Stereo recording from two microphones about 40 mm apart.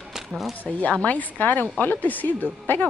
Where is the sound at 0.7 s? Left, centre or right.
Left.